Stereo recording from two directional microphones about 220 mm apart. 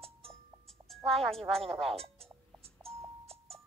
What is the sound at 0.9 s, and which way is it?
Speech, centre (ahead or behind).